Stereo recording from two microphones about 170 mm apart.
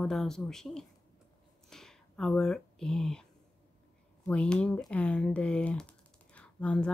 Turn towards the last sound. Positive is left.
turn(degrees=5)  # may be behind; listen again after turning